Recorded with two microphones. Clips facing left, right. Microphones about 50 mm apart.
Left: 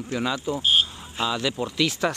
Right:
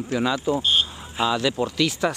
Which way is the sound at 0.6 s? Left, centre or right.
Centre.